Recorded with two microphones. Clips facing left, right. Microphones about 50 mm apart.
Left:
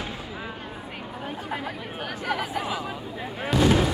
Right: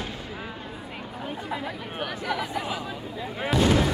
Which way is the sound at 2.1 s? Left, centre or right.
Left.